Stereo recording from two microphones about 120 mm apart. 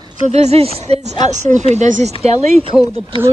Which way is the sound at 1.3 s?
85° right.